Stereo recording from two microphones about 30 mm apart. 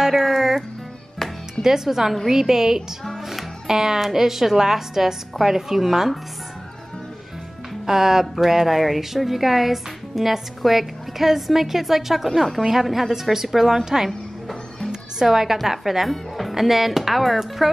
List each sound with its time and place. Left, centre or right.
0.1 s music: centre
1.6 s a woman's voice: centre
7.8 s a woman's voice: centre
15.2 s a woman's voice: centre